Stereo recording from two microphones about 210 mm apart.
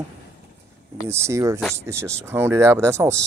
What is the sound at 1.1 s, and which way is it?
Speech, 15° right (ahead or behind).